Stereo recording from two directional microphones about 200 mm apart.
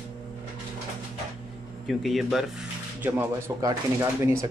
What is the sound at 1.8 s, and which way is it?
Speech, centre (ahead or behind).